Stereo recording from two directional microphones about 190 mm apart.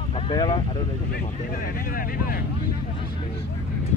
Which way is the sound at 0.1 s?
25° left (ahead or behind).